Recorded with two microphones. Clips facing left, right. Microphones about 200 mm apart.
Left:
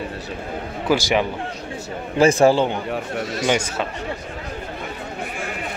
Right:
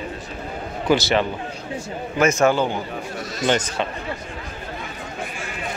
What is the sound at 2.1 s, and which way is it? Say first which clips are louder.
Speech: left 3 dB; 30° left (ahead or behind).